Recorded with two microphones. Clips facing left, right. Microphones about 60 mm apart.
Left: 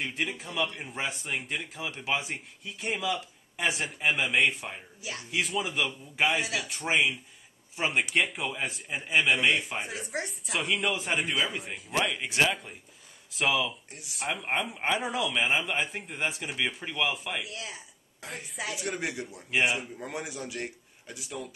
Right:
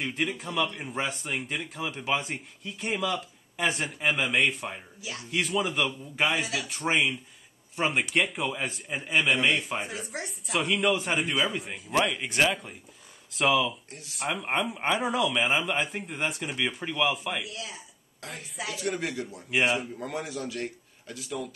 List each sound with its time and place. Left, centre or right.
0.0 s speech: centre
17.5 s speech: left
18.2 s speech: centre
18.9 s a man's voice: centre
19.3 s speech: centre
19.7 s a man's voice: centre